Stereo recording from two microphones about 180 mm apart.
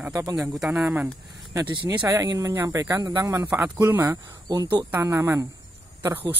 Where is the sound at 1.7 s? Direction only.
25° right (ahead or behind).